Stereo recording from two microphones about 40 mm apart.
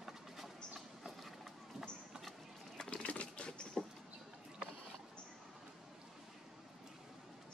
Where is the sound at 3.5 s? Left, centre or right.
Centre.